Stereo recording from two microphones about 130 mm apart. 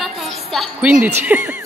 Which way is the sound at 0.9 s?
10° right (ahead or behind).